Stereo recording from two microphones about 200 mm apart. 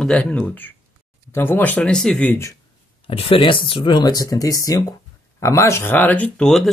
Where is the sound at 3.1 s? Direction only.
25° left (ahead or behind).